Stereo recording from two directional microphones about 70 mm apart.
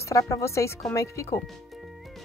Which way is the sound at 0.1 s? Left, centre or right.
Left.